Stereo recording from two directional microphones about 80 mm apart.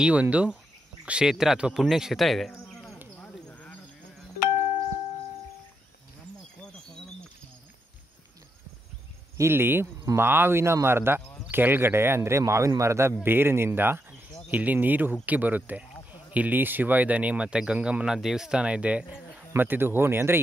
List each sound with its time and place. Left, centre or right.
0.0 s speech: centre
3.3 s a sound: centre
9.4 s speech: right; by 19.4 s centre
19.5 s speech: right